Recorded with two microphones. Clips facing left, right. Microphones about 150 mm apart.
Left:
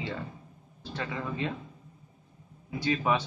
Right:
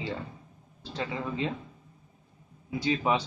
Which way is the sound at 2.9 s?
20° right (ahead or behind).